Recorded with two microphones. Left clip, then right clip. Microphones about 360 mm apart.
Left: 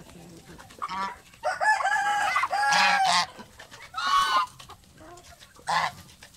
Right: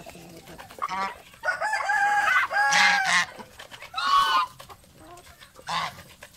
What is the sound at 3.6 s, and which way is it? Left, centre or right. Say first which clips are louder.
Chicken: right 2 dB; centre.